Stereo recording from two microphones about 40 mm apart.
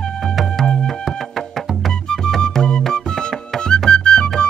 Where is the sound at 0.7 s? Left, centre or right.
Centre.